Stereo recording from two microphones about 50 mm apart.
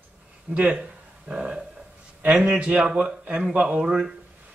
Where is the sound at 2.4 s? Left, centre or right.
Right.